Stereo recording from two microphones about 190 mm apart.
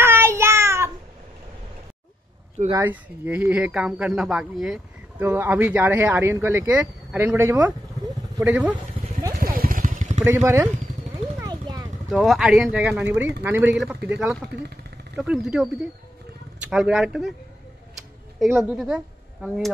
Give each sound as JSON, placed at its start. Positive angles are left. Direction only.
{"t": 0.0, "sound": "child singing", "side_deg": -15}
{"t": 2.7, "sound": "speech", "side_deg": -10}
{"t": 9.4, "sound": "vehicle", "side_deg": -50}
{"t": 10.2, "sound": "speech", "side_deg": -10}
{"t": 11.3, "sound": "a sound", "side_deg": -20}
{"t": 12.1, "sound": "speech", "side_deg": 0}
{"t": 18.4, "sound": "speech", "side_deg": 0}